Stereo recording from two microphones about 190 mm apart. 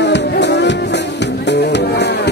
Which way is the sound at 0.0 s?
65° left (ahead or behind).